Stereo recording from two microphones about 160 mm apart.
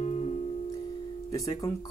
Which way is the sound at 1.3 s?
20° left (ahead or behind).